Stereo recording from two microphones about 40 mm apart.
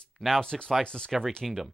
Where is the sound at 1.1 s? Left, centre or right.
Centre.